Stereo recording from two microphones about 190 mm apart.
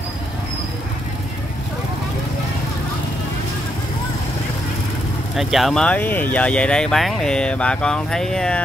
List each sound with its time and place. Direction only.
5.3 s speech: centre (ahead or behind)